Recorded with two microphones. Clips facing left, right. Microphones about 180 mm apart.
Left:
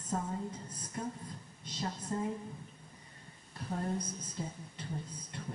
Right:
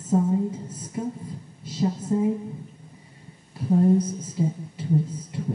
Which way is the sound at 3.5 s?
10° right (ahead or behind).